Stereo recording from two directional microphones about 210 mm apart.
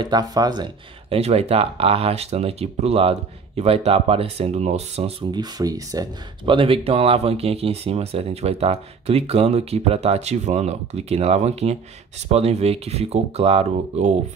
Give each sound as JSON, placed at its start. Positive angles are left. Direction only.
{"t": 0.0, "sound": "speech", "side_deg": -20}
{"t": 1.1, "sound": "speech", "side_deg": -30}